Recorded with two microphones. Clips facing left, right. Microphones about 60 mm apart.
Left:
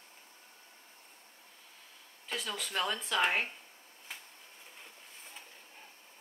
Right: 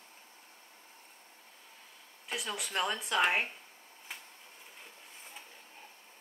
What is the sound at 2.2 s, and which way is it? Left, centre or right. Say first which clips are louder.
Speech: even; centre.